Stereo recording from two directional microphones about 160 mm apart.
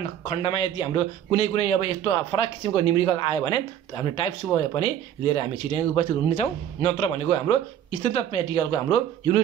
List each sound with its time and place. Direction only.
0.0 s a man's voice: 40° left (ahead or behind)